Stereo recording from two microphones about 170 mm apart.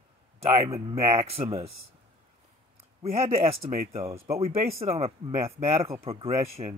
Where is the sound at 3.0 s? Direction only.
35° right (ahead or behind).